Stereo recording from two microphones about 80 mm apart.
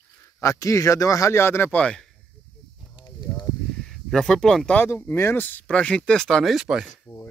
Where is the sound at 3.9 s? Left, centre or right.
Centre.